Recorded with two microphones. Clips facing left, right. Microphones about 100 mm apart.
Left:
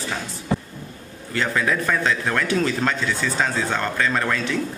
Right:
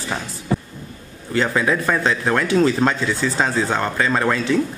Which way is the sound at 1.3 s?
25° right (ahead or behind).